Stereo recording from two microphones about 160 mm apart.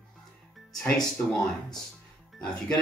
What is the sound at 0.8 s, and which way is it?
Speech, 5° left (ahead or behind).